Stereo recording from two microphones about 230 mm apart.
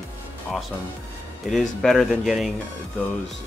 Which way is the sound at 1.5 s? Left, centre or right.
Centre.